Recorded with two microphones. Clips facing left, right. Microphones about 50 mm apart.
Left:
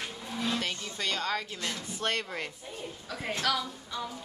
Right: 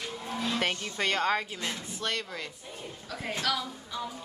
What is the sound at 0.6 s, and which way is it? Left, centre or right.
Speech, right.